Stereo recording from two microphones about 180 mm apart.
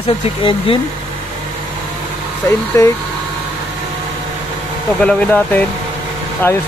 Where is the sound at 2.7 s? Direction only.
20° left (ahead or behind).